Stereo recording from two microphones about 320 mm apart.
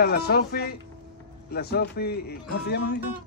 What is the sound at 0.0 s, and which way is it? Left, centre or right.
Speech, left.